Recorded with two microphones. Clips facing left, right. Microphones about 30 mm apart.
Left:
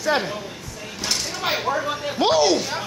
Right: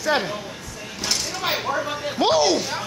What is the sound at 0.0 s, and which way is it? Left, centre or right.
Speech, centre.